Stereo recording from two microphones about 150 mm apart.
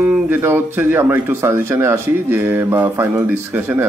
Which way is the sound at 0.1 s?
15° right (ahead or behind).